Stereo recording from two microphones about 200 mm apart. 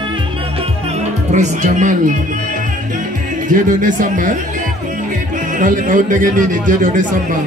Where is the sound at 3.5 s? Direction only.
40° right (ahead or behind).